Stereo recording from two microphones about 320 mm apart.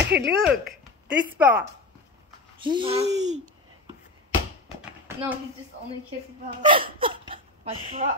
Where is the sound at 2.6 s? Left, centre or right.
Centre.